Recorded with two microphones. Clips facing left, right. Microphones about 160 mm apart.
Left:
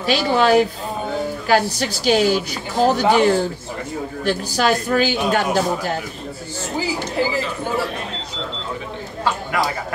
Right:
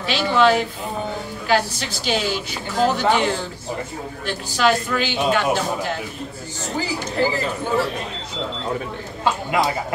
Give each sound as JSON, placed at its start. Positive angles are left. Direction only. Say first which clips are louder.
{"t": 0.0, "sound": "a man's voice", "louder": "even", "side_deg": 40}
{"t": 9.2, "sound": "speech", "louder": "right 1 dB", "side_deg": -20}